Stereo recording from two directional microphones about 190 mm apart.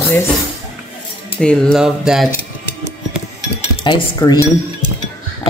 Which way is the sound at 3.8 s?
25° left (ahead or behind).